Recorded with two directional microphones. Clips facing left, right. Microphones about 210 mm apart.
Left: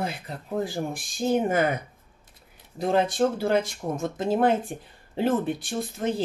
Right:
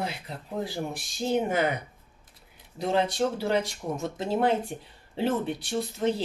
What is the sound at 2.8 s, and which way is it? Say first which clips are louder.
Speech: left 3 dB; 50° left (ahead or behind).